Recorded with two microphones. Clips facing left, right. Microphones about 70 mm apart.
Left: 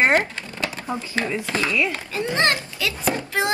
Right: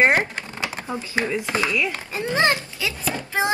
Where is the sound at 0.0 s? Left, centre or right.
Centre.